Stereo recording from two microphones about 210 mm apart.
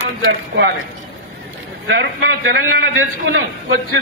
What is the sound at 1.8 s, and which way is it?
A man's voice, 55° right (ahead or behind).